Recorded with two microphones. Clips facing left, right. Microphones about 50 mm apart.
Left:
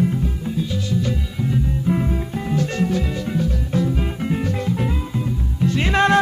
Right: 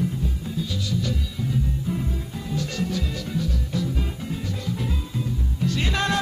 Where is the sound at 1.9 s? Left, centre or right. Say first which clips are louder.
Left 7 dB; left.